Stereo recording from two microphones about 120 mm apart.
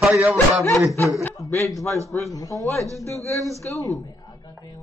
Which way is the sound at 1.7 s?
Centre (ahead or behind).